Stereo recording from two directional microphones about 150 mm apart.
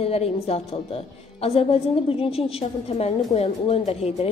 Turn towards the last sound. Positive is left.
turn(degrees=45)  # may be behind; listen again after turning